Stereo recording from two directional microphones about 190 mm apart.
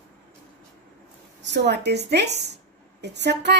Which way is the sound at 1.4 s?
65° right (ahead or behind).